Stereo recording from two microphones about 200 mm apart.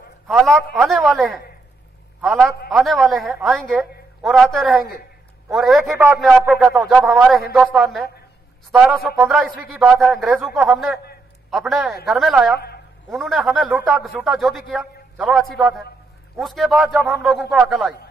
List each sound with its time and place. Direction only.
0.3 s a man's voice: centre (ahead or behind)
2.7 s a man's voice: centre (ahead or behind)
12.5 s a sound: 50° left (ahead or behind)
13.1 s a man's voice: centre (ahead or behind)